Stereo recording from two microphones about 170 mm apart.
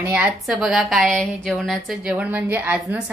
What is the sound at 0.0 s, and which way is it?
A woman's voice, 10° right (ahead or behind).